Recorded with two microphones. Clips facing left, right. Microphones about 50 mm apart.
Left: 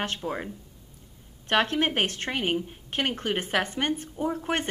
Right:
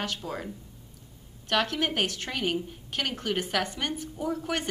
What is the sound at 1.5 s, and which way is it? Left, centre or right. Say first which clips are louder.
A woman's voice: left 3 dB; left.